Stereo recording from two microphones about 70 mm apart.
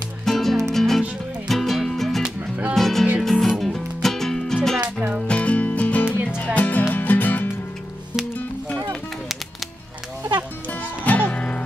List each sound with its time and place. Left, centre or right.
0.2 s music: centre
5.2 s music: centre
10.7 s music: left